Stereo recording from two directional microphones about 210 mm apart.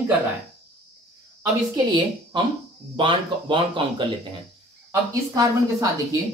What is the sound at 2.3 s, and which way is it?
Speech, 20° right (ahead or behind).